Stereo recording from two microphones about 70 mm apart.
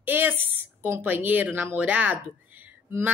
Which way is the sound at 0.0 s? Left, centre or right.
Right.